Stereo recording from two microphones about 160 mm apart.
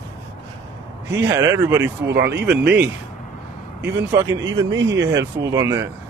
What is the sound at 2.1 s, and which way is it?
Speech, 90° right.